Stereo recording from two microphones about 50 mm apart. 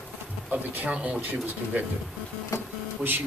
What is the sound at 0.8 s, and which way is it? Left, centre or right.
Speech, right.